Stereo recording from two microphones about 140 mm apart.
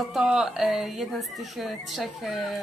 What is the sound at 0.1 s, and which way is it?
A woman's voice, 5° right (ahead or behind).